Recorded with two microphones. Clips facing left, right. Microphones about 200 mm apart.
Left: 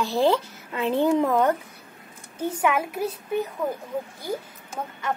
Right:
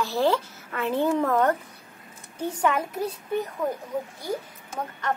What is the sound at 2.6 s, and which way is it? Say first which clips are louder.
Speech: left 1 dB; 10° left (ahead or behind).